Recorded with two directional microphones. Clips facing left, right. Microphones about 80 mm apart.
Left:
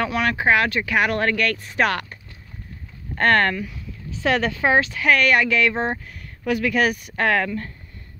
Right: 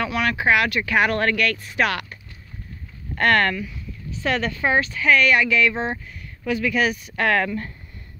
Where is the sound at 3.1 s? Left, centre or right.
Left.